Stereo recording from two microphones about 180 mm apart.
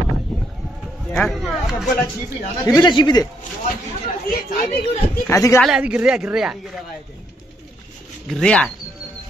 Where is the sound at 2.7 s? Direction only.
25° left (ahead or behind).